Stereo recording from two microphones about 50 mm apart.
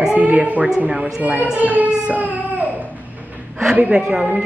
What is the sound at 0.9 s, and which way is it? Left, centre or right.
Speech, centre.